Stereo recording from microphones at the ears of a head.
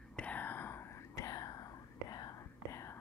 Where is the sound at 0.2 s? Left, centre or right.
Left.